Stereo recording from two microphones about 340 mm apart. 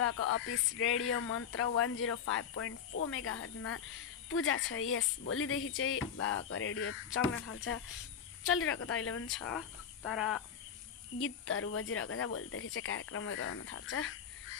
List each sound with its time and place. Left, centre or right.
0.0 s speech: left
9.5 s speech: centre
11.1 s speech: left